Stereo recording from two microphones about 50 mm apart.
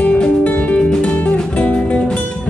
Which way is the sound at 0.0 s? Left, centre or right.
Left.